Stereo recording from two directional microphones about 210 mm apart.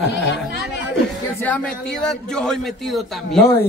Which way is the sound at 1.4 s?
5° left (ahead or behind).